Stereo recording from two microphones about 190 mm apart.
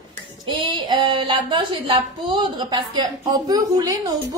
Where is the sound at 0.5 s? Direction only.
25° right (ahead or behind).